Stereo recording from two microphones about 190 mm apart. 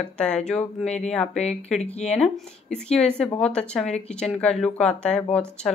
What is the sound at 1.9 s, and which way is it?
Speech, 35° left (ahead or behind).